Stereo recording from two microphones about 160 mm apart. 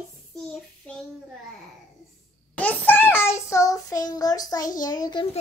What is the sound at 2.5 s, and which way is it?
Child singing, 10° left (ahead or behind).